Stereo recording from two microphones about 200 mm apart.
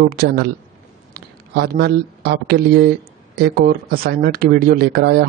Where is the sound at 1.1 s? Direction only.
50° right (ahead or behind).